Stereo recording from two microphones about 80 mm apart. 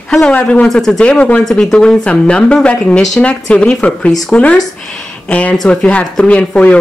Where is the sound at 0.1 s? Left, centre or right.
Centre.